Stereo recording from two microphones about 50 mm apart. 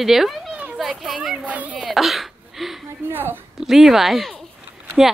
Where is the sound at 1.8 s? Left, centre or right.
Centre.